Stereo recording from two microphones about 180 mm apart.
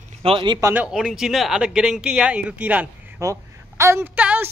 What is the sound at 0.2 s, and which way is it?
Speech, 30° right (ahead or behind).